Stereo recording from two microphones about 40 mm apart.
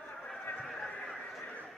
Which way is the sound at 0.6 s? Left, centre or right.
Centre.